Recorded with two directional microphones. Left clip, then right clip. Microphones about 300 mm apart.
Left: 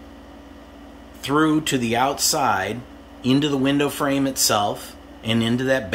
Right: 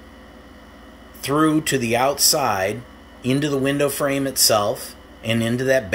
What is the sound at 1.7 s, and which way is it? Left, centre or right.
Speech, left.